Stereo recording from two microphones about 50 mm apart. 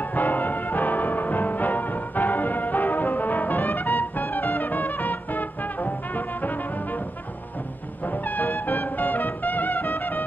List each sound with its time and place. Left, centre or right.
0.0 s music: left
8.0 s music: left